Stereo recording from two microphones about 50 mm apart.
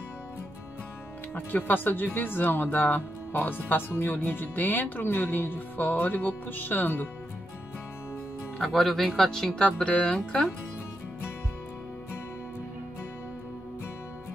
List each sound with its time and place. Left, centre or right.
1.3 s speech: left
8.5 s speech: centre
9.7 s speech: left